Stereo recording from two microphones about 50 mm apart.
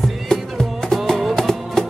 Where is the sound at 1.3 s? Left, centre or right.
Centre.